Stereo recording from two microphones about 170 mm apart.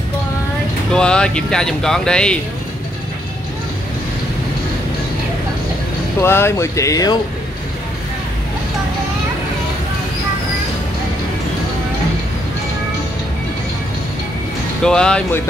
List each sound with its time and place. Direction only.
0.9 s speech: 5° left (ahead or behind)
6.2 s speech: 15° left (ahead or behind)
14.8 s speech: 5° left (ahead or behind)